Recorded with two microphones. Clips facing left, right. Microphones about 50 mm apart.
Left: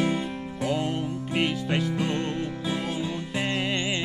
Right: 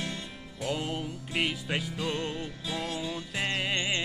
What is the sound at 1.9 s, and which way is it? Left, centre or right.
Music, left.